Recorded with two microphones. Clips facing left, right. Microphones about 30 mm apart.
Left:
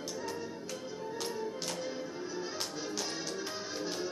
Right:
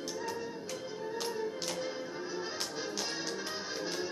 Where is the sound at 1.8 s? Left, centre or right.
Centre.